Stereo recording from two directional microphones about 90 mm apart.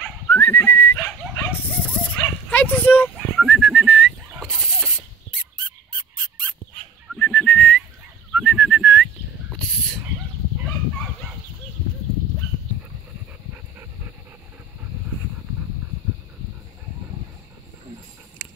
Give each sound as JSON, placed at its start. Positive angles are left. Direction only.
{"t": 0.3, "sound": "whistling", "side_deg": 25}
{"t": 1.0, "sound": "dog", "side_deg": 20}
{"t": 2.0, "sound": "bow-wow", "side_deg": 15}
{"t": 3.3, "sound": "bird", "side_deg": 5}
{"t": 4.5, "sound": "a sound", "side_deg": 5}
{"t": 7.2, "sound": "whistling", "side_deg": 10}
{"t": 8.3, "sound": "bird", "side_deg": 5}
{"t": 9.6, "sound": "a sound", "side_deg": 5}